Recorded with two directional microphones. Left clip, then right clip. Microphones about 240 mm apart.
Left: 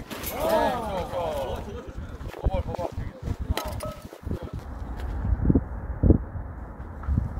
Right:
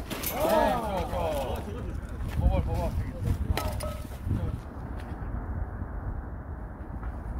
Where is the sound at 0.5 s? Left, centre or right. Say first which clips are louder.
Left 1 dB; left.